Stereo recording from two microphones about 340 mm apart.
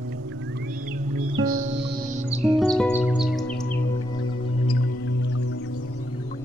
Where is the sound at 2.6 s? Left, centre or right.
Centre.